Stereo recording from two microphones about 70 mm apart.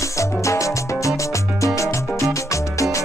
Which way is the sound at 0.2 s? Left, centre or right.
Left.